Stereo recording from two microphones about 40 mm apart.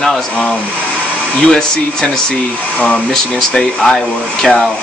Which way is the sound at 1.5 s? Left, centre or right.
Left.